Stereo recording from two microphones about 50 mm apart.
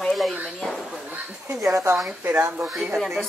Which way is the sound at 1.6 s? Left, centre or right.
Right.